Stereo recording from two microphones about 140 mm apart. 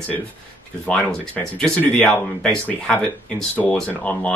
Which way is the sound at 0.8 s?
5° left (ahead or behind).